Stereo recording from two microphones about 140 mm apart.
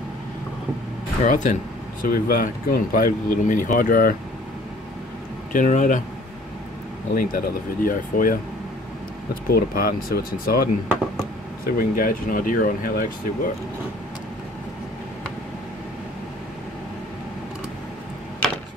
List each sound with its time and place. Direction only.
1.2 s speech: 65° left (ahead or behind)
2.0 s speech: 90° left
5.5 s speech: 65° left (ahead or behind)
7.2 s speech: 85° left